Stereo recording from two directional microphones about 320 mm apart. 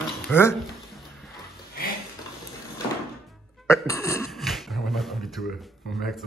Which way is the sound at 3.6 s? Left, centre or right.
Centre.